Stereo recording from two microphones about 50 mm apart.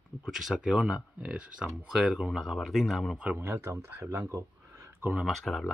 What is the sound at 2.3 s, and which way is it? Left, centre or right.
Speech, centre.